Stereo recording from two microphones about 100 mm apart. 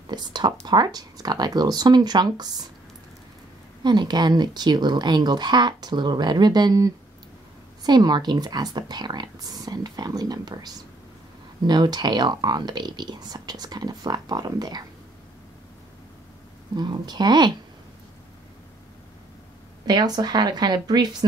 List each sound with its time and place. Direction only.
0.0 s speech: 45° right (ahead or behind)
3.8 s speech: 45° right (ahead or behind)
16.7 s speech: 45° right (ahead or behind)
19.9 s speech: 45° right (ahead or behind)